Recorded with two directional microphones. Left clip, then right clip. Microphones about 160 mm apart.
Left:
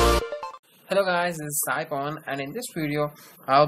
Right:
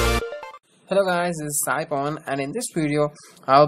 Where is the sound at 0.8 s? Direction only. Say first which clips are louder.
Right 2 dB; 25° right (ahead or behind).